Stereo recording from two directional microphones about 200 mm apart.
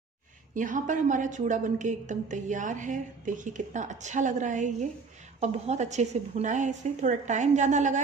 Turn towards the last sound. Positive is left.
turn(degrees=-35)  # may be behind; listen again after turning